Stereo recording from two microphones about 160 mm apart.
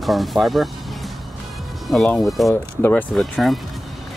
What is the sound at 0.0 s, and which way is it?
Speech, centre (ahead or behind).